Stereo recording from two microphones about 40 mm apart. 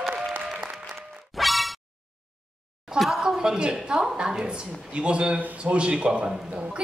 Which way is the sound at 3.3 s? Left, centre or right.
Centre.